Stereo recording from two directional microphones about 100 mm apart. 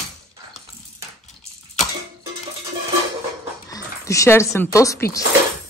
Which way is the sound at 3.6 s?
35° left (ahead or behind).